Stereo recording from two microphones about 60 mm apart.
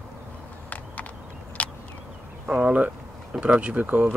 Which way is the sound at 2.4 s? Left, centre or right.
Right.